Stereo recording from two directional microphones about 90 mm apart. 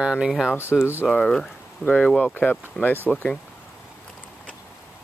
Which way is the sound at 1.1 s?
5° left (ahead or behind).